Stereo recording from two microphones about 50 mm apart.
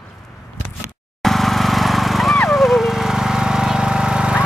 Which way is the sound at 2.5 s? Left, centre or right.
Centre.